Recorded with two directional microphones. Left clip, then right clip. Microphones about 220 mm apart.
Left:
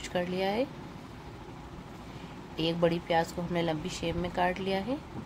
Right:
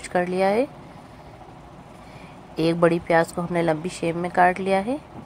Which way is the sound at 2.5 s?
20° right (ahead or behind).